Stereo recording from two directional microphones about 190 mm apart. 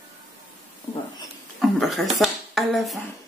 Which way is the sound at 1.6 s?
Centre (ahead or behind).